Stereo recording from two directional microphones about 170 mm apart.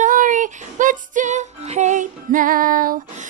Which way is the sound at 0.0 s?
50° right (ahead or behind).